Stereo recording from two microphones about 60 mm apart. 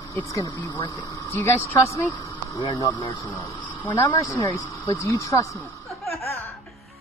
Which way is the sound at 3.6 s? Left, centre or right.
Left.